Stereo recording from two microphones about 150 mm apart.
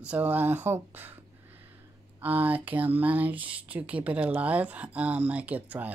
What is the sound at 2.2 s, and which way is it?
Speech, 10° right (ahead or behind).